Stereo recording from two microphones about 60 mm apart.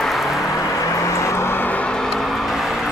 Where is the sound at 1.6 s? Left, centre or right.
Left.